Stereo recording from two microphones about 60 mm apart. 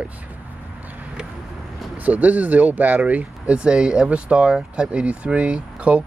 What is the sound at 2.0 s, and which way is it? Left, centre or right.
Speech, right.